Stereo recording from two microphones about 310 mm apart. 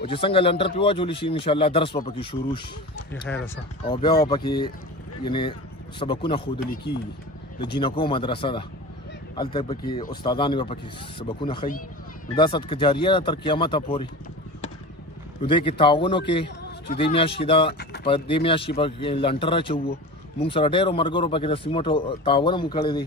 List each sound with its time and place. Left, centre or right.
0.0 s speech: centre
3.3 s speech: centre
6.5 s speech: left
7.8 s speech: centre
15.4 s speech: centre